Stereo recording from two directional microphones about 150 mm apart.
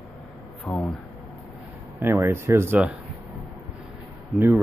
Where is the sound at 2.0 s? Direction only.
20° right (ahead or behind).